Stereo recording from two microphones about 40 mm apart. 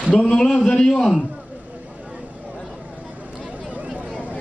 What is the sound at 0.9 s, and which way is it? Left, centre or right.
Speech, centre.